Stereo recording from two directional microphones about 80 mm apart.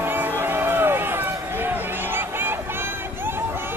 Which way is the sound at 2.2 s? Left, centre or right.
Right.